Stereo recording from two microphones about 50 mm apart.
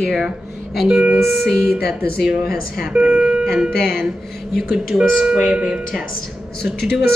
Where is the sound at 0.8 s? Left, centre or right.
Right.